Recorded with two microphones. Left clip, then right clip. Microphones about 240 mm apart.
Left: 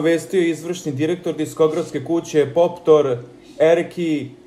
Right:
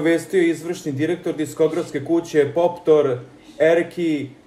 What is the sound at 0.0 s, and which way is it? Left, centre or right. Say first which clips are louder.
Speech: even; centre.